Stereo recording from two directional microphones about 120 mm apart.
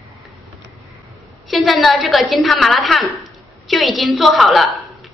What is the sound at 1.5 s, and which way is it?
A woman's voice, centre (ahead or behind).